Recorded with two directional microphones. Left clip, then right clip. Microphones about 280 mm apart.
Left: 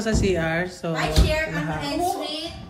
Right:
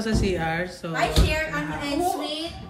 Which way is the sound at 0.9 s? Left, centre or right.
Centre.